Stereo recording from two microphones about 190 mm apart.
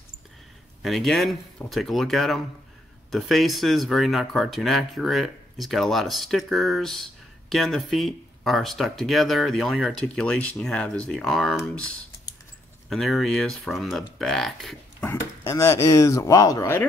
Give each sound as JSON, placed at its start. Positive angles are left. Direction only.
{"t": 0.8, "sound": "speech", "side_deg": 0}
{"t": 12.9, "sound": "speech", "side_deg": 0}
{"t": 15.0, "sound": "speech", "side_deg": 15}